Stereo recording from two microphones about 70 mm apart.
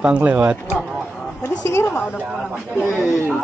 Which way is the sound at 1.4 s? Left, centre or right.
Left.